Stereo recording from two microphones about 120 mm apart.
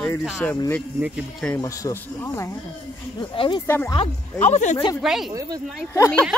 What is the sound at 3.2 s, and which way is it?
Speech, 45° left (ahead or behind).